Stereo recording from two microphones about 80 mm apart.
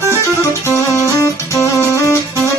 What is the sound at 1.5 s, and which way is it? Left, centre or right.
Music, left.